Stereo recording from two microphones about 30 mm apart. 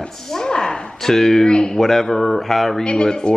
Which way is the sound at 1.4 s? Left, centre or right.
Left.